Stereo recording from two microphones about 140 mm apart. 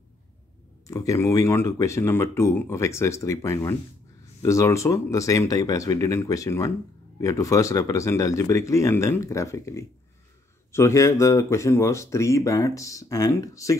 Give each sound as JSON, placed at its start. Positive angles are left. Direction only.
{"t": 0.8, "sound": "speech", "side_deg": 20}